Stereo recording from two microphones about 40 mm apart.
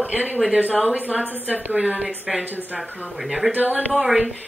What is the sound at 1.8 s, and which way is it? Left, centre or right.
Speech, right.